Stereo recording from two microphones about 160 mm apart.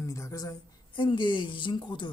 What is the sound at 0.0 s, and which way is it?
A woman's voice, 20° left (ahead or behind).